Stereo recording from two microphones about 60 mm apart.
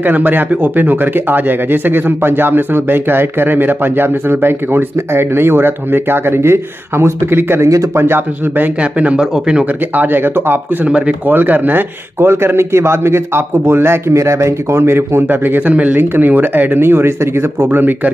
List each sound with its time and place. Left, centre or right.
0.0 s speech: right
7.6 s speech: right
8.0 s speech: right
8.9 s a man's voice: right
9.9 s speech: right
10.9 s a man's voice: right
15.2 s a man's voice: right
17.6 s speech: right